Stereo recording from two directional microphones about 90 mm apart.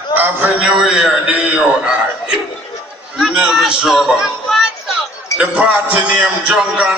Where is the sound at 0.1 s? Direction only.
20° right (ahead or behind).